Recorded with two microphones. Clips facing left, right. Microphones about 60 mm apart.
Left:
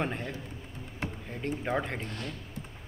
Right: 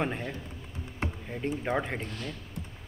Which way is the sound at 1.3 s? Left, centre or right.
Centre.